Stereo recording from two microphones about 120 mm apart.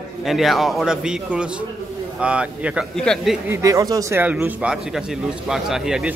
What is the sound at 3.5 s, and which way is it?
Speech, 25° right (ahead or behind).